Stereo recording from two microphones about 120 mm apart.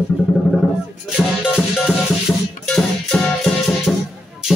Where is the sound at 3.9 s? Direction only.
15° left (ahead or behind).